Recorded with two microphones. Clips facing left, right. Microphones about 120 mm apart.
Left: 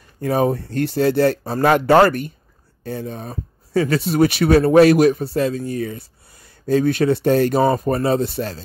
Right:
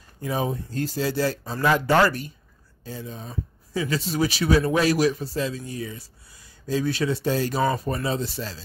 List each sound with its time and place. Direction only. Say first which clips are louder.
0.2 s speech: left 8 dB; 55° left (ahead or behind)